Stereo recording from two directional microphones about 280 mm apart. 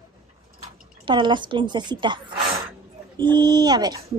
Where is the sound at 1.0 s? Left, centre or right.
Centre.